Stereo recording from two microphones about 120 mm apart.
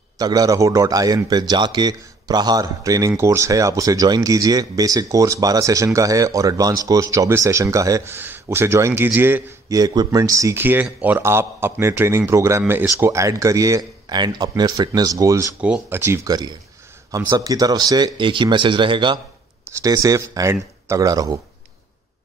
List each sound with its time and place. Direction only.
0.2 s speech: 30° right (ahead or behind)
9.7 s speech: 30° right (ahead or behind)
15.6 s speech: 10° right (ahead or behind)
16.1 s speech: 35° right (ahead or behind)
19.8 s speech: 30° right (ahead or behind)